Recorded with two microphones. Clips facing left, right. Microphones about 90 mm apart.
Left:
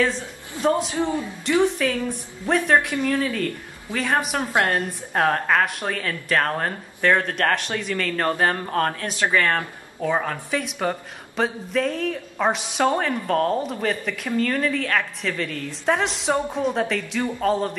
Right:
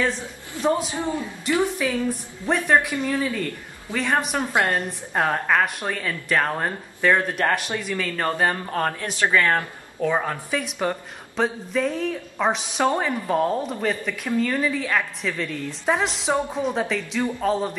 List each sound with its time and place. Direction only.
0.6 s a man's voice: 20° left (ahead or behind)
1.6 s speech: 5° right (ahead or behind)
9.2 s speech: 15° right (ahead or behind)
10.1 s speech: 5° right (ahead or behind)